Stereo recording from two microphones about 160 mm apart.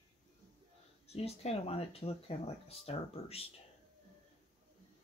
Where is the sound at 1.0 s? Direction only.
40° left (ahead or behind).